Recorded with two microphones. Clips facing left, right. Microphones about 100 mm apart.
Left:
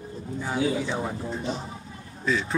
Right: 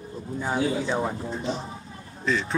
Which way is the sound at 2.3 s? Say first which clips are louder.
Even; 5° left (ahead or behind).